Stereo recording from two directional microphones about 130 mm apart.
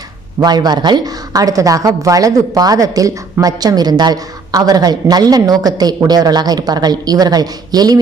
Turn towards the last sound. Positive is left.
turn(degrees=-30)  # may be behind; listen again after turning